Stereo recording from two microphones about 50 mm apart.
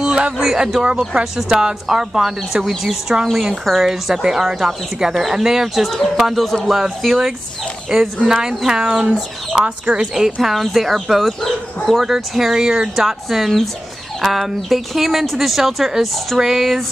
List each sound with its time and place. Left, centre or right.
0.0 s a sound: right
0.4 s speech: centre
6.8 s speech: centre
12.0 s speech: centre
12.9 s speech: centre